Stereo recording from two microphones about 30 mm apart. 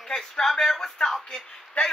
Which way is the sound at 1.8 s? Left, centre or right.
Left.